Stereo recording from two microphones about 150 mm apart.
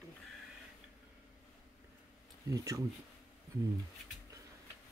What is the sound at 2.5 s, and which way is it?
Speech, 20° right (ahead or behind).